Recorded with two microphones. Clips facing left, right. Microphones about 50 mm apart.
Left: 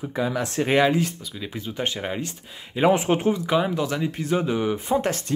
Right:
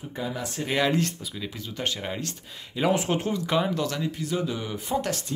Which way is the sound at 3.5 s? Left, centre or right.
Centre.